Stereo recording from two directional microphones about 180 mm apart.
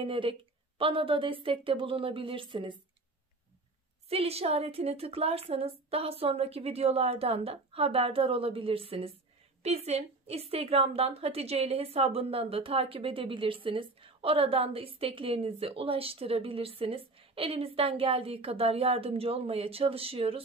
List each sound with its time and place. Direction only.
0.0 s speech: 30° right (ahead or behind)
4.1 s a woman's voice: 35° right (ahead or behind)